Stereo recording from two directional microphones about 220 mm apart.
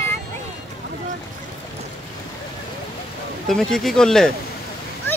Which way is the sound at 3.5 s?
Centre (ahead or behind).